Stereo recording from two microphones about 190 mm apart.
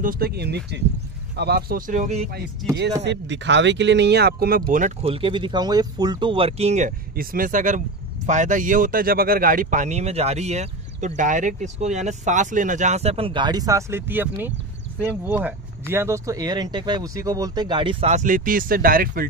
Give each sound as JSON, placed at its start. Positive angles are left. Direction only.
{"t": 0.0, "sound": "speech", "side_deg": -50}
{"t": 3.0, "sound": "speech", "side_deg": -70}
{"t": 5.0, "sound": "speech", "side_deg": -30}
{"t": 7.2, "sound": "speech", "side_deg": -45}